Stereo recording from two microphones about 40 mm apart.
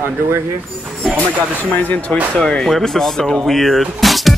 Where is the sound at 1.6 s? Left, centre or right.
Left.